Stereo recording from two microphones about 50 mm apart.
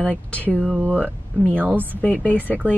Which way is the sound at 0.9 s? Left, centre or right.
Right.